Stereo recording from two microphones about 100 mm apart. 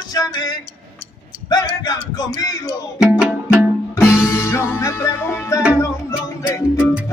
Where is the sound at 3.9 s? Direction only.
25° left (ahead or behind).